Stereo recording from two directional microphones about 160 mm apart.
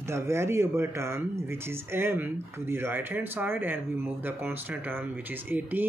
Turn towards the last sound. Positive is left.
turn(degrees=-10)  # may be behind; listen again after turning